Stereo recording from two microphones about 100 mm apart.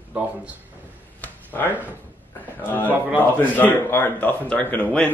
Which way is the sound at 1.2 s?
20° left (ahead or behind).